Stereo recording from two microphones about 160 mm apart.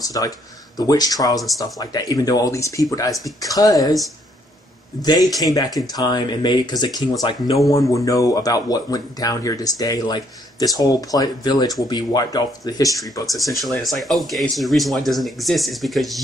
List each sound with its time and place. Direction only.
0.0 s speech: 20° left (ahead or behind)
5.4 s speech: 25° left (ahead or behind)
13.3 s speech: centre (ahead or behind)